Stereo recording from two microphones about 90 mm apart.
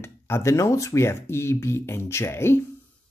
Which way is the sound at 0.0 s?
30° left (ahead or behind).